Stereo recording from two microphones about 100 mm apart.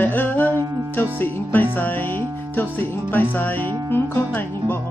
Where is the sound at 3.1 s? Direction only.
20° left (ahead or behind).